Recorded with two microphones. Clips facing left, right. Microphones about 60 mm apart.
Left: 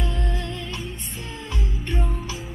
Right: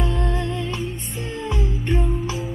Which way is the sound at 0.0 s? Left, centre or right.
Right.